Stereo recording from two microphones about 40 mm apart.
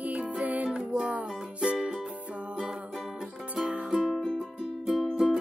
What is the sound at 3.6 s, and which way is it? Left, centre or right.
Music, right.